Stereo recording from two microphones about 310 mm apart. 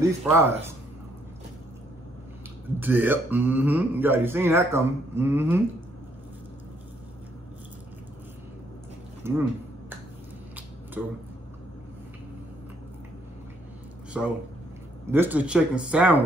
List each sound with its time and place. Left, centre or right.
0.0 s speech: centre
2.8 s speech: centre
9.2 s a sound: centre
11.0 s speech: centre
14.2 s speech: centre